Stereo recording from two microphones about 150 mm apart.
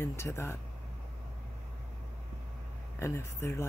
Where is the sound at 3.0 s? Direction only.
15° left (ahead or behind).